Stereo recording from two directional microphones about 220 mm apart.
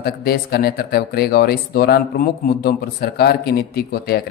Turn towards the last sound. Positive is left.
turn(degrees=45)  # may be behind; listen again after turning